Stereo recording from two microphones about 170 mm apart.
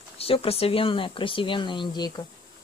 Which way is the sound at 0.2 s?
35° left (ahead or behind).